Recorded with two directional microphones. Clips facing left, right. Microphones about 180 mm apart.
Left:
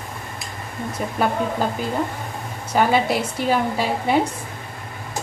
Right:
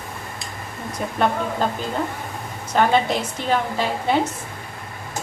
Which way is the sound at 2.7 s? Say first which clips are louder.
Even; 10° left (ahead or behind).